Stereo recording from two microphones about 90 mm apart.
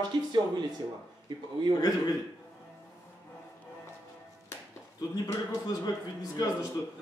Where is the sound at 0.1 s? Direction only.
55° right (ahead or behind).